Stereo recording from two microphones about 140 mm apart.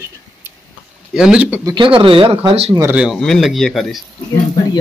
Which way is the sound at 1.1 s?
5° right (ahead or behind).